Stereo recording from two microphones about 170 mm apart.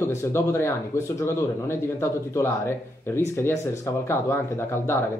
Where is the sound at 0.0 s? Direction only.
15° left (ahead or behind).